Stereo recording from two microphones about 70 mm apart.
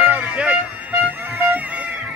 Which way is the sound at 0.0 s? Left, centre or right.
Right.